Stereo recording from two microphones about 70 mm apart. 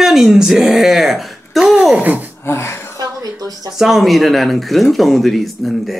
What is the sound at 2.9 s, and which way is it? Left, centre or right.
Music, right.